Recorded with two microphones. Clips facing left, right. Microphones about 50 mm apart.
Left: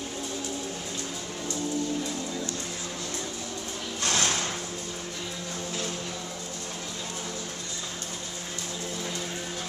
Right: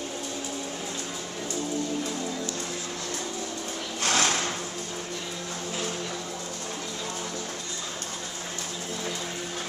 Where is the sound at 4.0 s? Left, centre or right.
Right.